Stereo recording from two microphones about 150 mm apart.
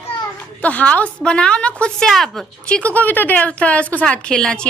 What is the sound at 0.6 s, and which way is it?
A woman's voice, 10° left (ahead or behind).